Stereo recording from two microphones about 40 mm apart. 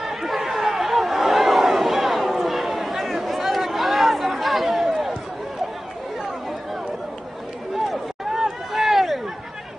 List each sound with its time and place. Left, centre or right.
0.0 s chatter: centre
1.2 s a sound: centre
7.8 s run: centre